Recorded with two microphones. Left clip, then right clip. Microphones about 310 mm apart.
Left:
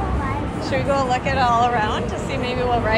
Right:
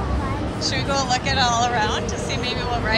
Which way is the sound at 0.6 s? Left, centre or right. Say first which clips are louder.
Left 3 dB; centre.